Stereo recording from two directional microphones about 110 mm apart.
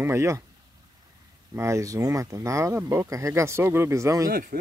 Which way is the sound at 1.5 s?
25° right (ahead or behind).